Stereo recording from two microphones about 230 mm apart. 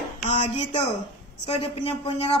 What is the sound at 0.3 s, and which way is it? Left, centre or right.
Speech, left.